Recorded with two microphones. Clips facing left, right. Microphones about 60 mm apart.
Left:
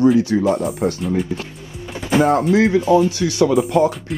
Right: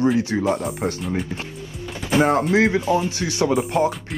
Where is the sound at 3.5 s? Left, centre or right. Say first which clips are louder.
Left 4 dB; left.